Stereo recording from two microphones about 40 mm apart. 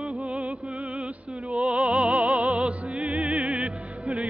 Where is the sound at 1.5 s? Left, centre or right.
Right.